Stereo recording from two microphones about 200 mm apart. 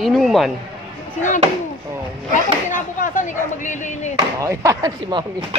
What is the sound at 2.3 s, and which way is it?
Speech, 40° left (ahead or behind).